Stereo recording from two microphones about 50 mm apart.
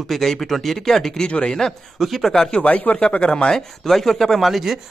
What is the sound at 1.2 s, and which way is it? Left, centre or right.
Speech, left.